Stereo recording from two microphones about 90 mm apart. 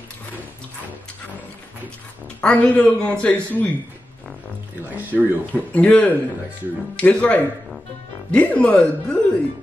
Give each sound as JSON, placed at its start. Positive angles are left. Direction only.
{"t": 2.4, "sound": "speech", "side_deg": 15}
{"t": 4.8, "sound": "speech", "side_deg": -20}
{"t": 5.5, "sound": "speech", "side_deg": 15}